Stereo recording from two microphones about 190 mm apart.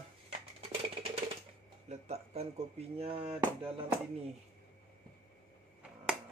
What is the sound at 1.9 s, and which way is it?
Speech, 35° right (ahead or behind).